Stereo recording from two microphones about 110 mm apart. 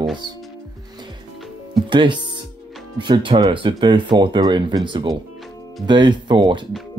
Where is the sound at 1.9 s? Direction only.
45° right (ahead or behind).